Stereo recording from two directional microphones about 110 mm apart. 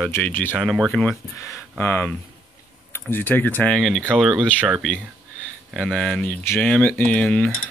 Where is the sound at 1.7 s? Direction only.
20° left (ahead or behind).